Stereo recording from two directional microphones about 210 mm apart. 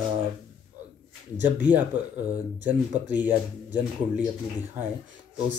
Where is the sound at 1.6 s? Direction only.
10° right (ahead or behind).